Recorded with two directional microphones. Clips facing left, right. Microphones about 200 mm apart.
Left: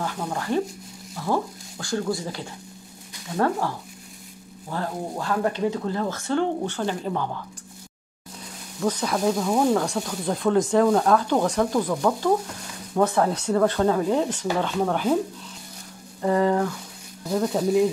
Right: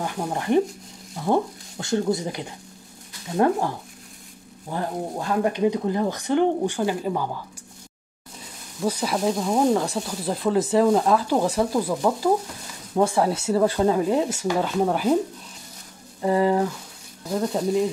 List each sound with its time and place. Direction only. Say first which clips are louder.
0.0 s speech: right 2 dB; 20° right (ahead or behind)
8.8 s speech: even; 5° right (ahead or behind)
16.2 s speech: right 1 dB; 10° right (ahead or behind)
17.3 s speech: left 1 dB; centre (ahead or behind)